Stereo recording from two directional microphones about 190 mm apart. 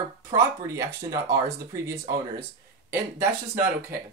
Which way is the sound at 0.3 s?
20° right (ahead or behind).